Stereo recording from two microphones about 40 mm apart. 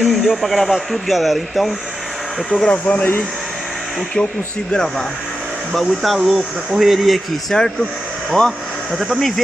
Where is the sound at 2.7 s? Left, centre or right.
Left.